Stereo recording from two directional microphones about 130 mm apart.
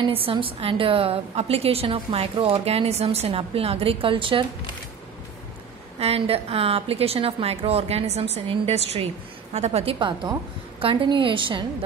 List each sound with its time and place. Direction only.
0.0 s a woman's voice: 45° right (ahead or behind)
5.9 s a woman's voice: 50° right (ahead or behind)